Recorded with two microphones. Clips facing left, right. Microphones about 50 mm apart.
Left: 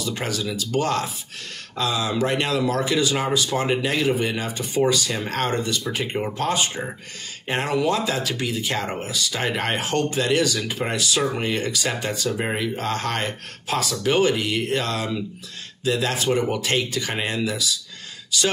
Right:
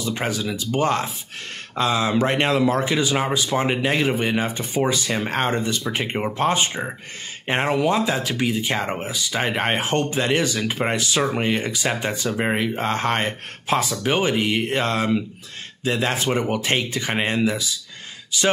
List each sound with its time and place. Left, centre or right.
0.0 s speech: right